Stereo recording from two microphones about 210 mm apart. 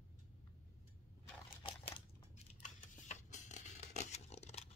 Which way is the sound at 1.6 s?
25° left (ahead or behind).